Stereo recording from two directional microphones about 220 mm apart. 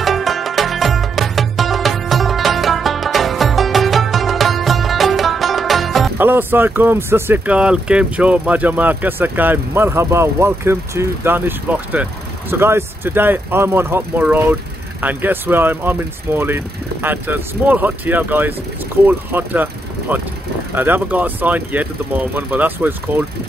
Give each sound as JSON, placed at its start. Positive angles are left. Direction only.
{"t": 0.0, "sound": "music", "side_deg": 0}
{"t": 19.0, "sound": "speech", "side_deg": -10}